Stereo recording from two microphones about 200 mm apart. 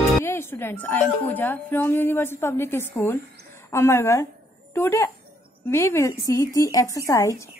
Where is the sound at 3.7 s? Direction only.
15° left (ahead or behind).